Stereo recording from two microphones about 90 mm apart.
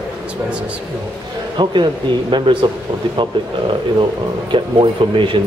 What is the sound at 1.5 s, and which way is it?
Speech, 60° right (ahead or behind).